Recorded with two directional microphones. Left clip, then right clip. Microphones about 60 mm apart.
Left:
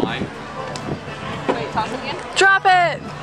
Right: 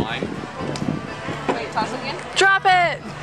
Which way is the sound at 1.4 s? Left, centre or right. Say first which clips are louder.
Left 2 dB; right.